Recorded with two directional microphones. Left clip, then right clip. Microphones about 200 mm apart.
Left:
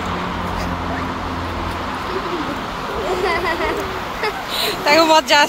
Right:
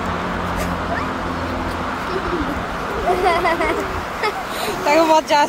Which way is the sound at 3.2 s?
65° right (ahead or behind).